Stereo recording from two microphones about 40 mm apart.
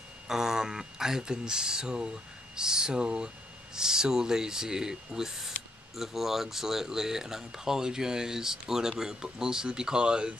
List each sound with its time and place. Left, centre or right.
0.3 s speech: centre